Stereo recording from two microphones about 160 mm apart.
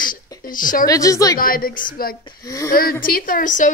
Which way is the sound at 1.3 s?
65° left (ahead or behind).